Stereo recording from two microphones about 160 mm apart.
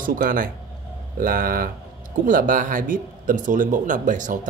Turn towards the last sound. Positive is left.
turn(degrees=-55)  # may be behind; listen again after turning